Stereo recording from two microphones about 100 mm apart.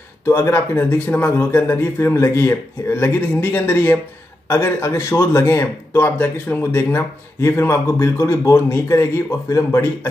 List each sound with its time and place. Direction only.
0.2 s speech: 30° left (ahead or behind)